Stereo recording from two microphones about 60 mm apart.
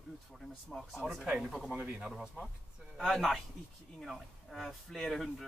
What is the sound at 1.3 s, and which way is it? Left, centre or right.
Speech, centre.